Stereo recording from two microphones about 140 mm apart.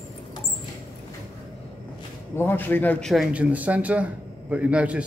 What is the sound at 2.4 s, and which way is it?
Speech, 15° left (ahead or behind).